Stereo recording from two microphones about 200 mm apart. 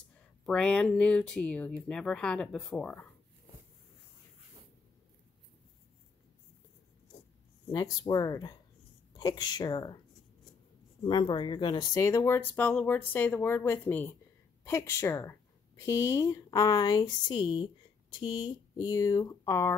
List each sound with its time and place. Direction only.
0.1 s speech: 5° left (ahead or behind)
7.7 s speech: 20° left (ahead or behind)
11.1 s speech: 20° left (ahead or behind)